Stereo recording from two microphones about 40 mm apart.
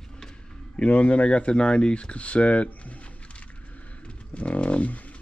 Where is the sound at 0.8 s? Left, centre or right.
Left.